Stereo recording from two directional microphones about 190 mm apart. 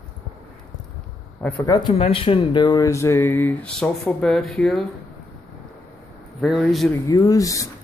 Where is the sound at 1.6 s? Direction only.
20° left (ahead or behind); by 4.8 s 5° left (ahead or behind).